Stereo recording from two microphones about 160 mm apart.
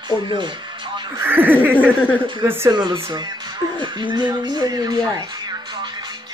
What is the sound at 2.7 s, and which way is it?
Speech, 25° right (ahead or behind).